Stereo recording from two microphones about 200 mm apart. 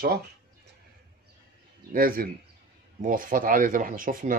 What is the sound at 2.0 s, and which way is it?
Speech, 45° right (ahead or behind).